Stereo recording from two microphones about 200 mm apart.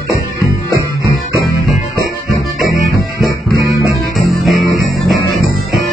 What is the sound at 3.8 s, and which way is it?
Music, centre (ahead or behind).